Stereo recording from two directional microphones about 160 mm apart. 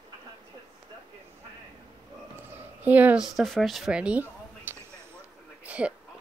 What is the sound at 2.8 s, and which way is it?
A woman's voice, 10° right (ahead or behind).